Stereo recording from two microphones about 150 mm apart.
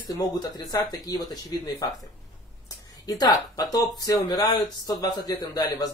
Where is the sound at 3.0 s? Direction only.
25° left (ahead or behind).